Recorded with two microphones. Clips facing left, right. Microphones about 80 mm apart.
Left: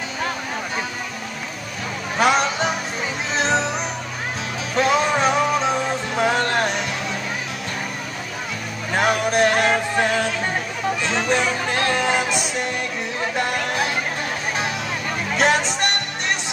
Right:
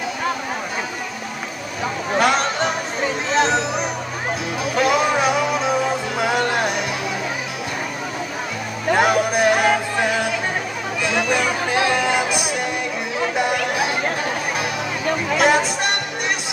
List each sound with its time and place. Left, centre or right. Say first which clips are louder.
2.1 s music: even; centre
8.9 s music: right 2 dB; centre
15.3 s music: right 1 dB; centre